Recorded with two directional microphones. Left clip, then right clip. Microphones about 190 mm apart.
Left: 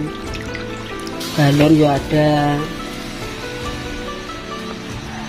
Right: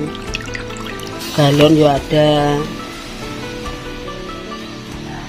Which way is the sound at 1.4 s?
40° right (ahead or behind).